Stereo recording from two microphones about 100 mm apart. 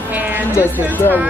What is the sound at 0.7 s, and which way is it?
Speech, 20° left (ahead or behind).